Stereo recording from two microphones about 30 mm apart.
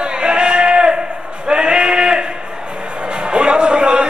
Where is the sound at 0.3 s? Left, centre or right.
Right.